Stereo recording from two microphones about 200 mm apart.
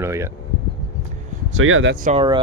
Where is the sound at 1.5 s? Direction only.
90° right.